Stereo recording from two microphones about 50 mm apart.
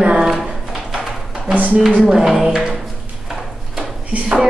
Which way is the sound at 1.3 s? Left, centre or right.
Centre.